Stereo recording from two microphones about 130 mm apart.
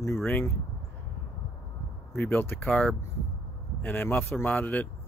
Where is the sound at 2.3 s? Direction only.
15° left (ahead or behind).